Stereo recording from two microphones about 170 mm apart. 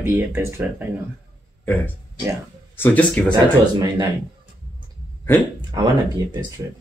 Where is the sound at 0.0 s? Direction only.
15° right (ahead or behind).